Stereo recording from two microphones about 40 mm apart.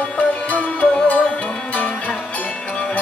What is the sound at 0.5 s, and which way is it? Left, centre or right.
Music, left.